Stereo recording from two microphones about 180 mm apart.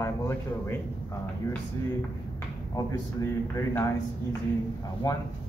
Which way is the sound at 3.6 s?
15° left (ahead or behind).